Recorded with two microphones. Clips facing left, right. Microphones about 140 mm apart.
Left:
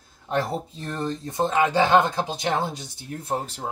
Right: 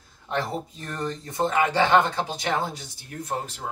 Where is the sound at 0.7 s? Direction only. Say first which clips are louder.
Left 2 dB; 25° left (ahead or behind).